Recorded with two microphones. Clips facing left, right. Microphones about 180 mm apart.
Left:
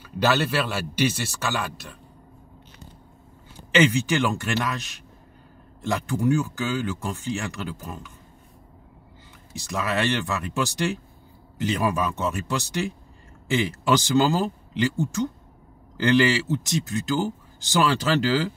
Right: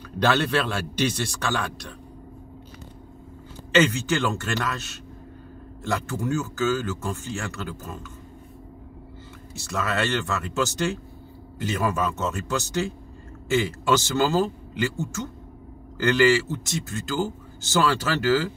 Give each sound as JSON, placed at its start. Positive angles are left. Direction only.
{"t": 0.2, "sound": "a man's voice", "side_deg": 5}
{"t": 3.7, "sound": "speech", "side_deg": 15}
{"t": 9.5, "sound": "speech", "side_deg": 15}